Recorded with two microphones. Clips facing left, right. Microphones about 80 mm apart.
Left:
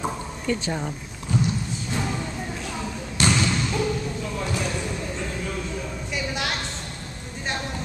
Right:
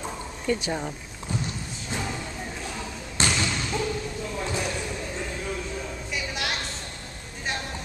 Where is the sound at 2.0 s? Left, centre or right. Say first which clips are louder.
Left 3 dB; centre.